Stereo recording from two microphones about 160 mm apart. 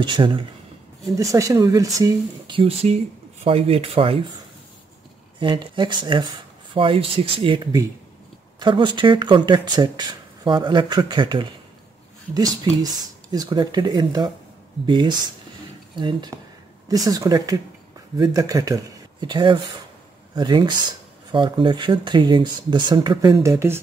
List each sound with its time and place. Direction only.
0.0 s speech: 30° right (ahead or behind)
1.1 s speech: 20° right (ahead or behind)
2.5 s speech: 35° right (ahead or behind)
5.4 s speech: 30° right (ahead or behind)